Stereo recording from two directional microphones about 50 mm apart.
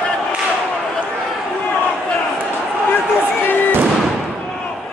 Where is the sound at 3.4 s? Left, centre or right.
Left.